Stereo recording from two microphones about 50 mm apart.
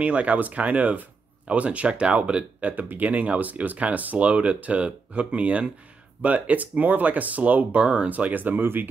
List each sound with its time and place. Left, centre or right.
0.0 s speech: right